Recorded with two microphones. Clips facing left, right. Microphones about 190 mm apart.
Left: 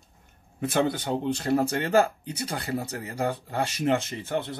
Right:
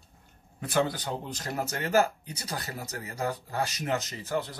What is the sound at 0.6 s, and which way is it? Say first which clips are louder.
Speech: left 3 dB; 25° left (ahead or behind).